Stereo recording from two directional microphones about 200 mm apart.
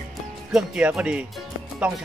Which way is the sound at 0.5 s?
5° right (ahead or behind).